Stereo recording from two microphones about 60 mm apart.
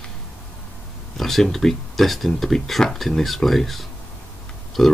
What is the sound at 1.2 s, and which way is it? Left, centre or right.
Speech, centre.